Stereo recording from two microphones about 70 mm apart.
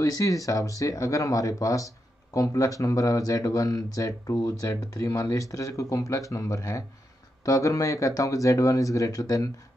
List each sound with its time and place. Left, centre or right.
0.0 s speech: left